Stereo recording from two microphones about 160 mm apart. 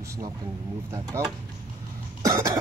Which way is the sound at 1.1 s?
15° right (ahead or behind).